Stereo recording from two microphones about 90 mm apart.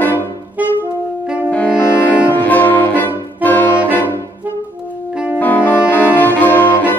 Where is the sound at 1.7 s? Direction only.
25° left (ahead or behind).